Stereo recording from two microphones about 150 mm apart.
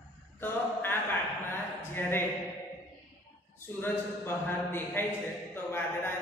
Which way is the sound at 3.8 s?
15° left (ahead or behind).